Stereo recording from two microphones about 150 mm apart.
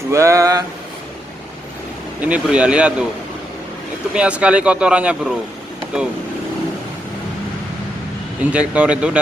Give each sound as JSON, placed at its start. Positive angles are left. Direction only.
{"t": 0.1, "sound": "speech", "side_deg": -20}
{"t": 2.1, "sound": "speech", "side_deg": -10}
{"t": 4.1, "sound": "speech", "side_deg": -10}
{"t": 8.5, "sound": "speech", "side_deg": -10}